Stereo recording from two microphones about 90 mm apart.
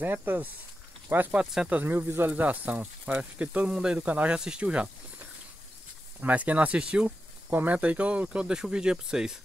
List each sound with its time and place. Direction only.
0.0 s speech: 20° right (ahead or behind)
1.8 s speech: 25° right (ahead or behind)
6.2 s speech: 15° right (ahead or behind)